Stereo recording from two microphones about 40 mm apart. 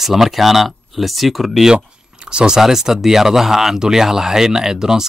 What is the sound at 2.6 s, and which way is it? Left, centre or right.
Speech, centre.